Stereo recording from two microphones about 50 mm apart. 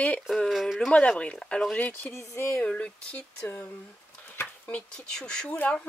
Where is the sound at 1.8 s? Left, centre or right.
Left.